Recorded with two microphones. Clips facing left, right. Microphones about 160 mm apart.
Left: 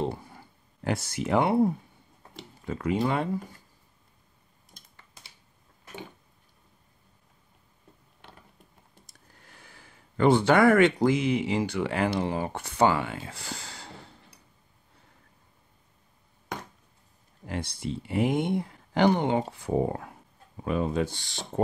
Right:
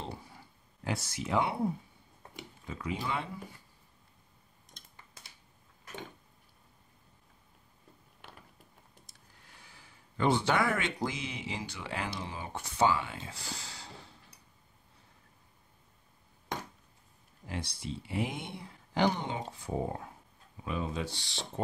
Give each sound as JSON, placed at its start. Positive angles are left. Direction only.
{"t": 0.0, "sound": "a sound", "side_deg": 50}
{"t": 0.8, "sound": "speech", "side_deg": 50}
{"t": 9.3, "sound": "speech", "side_deg": 55}
{"t": 17.5, "sound": "speech", "side_deg": 55}
{"t": 20.5, "sound": "speech", "side_deg": 50}